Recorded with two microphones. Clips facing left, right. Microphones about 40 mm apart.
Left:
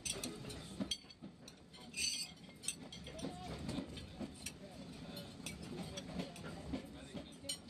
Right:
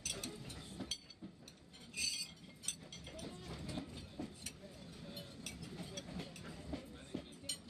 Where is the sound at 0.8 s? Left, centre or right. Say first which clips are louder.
Left 4 dB; centre.